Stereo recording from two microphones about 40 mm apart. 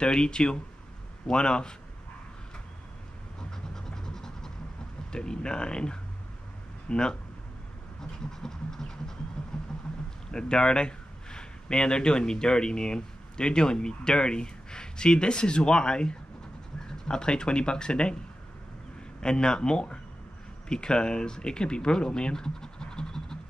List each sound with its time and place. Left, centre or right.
0.0 s speech: left
3.7 s a sound: centre
5.1 s speech: left
8.0 s a sound: centre
9.4 s vehicle: centre
10.3 s speech: left
19.2 s speech: centre